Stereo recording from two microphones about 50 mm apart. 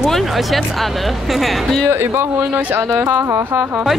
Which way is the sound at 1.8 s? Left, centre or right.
Right.